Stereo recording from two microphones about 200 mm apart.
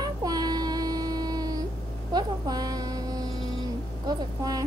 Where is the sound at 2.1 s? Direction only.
20° right (ahead or behind).